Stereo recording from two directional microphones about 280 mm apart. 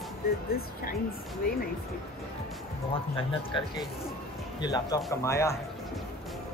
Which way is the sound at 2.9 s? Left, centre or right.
Centre.